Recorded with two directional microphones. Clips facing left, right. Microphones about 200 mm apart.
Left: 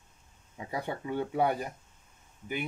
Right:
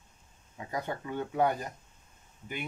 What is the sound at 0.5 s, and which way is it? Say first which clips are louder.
Speech: even; 15° left (ahead or behind).